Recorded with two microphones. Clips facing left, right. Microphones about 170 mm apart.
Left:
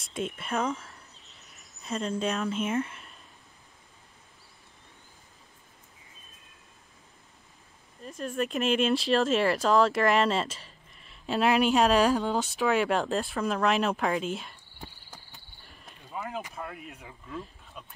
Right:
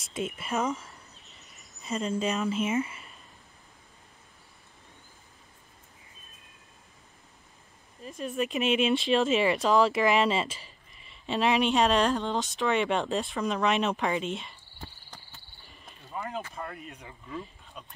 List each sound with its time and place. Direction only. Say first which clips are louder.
0.1 s a sound: even; centre (ahead or behind)
8.0 s speech: even; centre (ahead or behind)
14.8 s cricket: even; 15° left (ahead or behind)
15.6 s speech: even; centre (ahead or behind)